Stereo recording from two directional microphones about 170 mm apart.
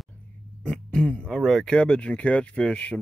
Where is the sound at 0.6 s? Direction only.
5° left (ahead or behind).